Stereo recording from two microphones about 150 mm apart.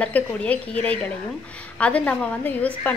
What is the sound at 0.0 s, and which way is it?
Speech, 10° left (ahead or behind).